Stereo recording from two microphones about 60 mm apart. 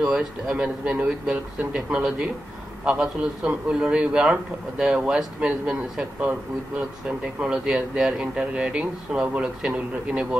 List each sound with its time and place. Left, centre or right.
0.0 s a man's voice: centre